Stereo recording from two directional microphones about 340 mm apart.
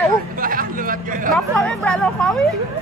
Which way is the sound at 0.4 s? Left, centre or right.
Right.